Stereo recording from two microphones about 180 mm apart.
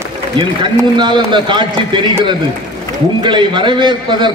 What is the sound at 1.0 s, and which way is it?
A man's voice, 25° right (ahead or behind).